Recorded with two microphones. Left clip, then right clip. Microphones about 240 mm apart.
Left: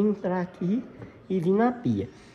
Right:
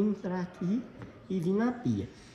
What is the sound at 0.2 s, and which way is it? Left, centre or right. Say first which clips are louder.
Speech: left 7 dB; centre.